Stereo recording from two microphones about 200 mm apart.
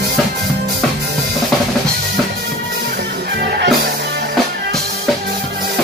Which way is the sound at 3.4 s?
55° right (ahead or behind).